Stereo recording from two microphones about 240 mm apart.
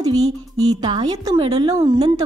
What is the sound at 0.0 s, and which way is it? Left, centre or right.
Music, centre.